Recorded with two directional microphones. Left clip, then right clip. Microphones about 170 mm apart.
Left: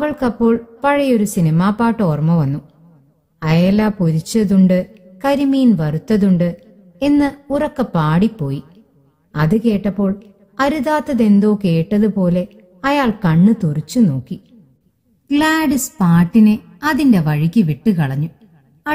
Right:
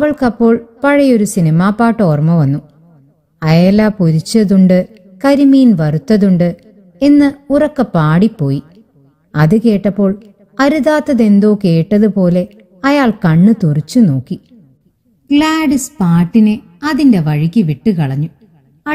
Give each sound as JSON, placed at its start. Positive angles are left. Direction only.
{"t": 0.0, "sound": "a woman's voice", "side_deg": -20}
{"t": 15.2, "sound": "a woman's voice", "side_deg": -5}